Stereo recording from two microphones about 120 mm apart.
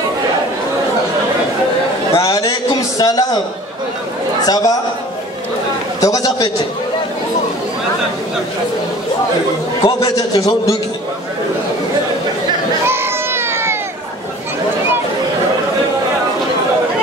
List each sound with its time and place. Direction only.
2.1 s a sound: 30° left (ahead or behind)
3.0 s a man's voice: 30° left (ahead or behind)
4.4 s a man's voice: 30° left (ahead or behind)
5.9 s a man's voice: 30° left (ahead or behind)
9.8 s a man's voice: 30° left (ahead or behind)
12.8 s baby cry: 20° right (ahead or behind)